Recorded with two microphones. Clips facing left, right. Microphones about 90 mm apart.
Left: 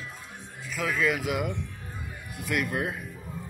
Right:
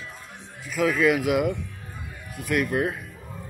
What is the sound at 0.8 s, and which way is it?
Speech, 60° right (ahead or behind).